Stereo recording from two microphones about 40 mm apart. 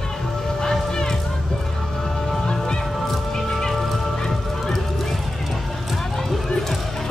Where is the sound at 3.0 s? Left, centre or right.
Centre.